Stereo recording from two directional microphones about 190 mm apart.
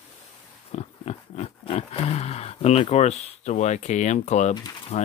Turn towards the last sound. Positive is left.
turn(degrees=35)  # may be behind; listen again after turning